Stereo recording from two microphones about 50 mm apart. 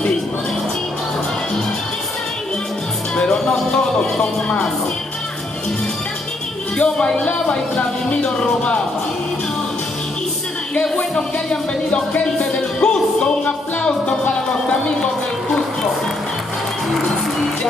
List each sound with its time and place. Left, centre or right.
3.2 s music: centre
3.7 s speech: centre
6.8 s speech: centre
10.7 s music: centre
12.4 s music: centre
14.2 s a sound: left